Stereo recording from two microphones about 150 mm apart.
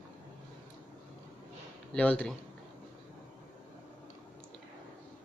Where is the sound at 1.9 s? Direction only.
10° left (ahead or behind).